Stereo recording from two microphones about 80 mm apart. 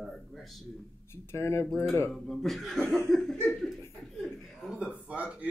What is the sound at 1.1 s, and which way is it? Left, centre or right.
Speech, left.